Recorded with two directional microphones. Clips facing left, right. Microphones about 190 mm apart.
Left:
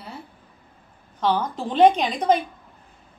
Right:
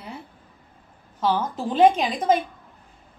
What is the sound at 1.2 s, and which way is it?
A woman's voice, 5° right (ahead or behind).